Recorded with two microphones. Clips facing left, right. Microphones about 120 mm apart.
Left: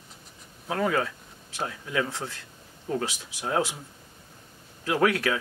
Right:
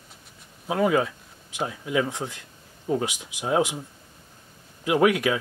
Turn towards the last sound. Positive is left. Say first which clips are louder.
# right 3 dB
turn(degrees=-15)  # may be behind; listen again after turning